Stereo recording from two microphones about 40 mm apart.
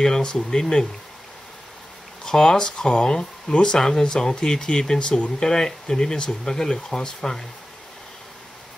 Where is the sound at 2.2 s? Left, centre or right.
Centre.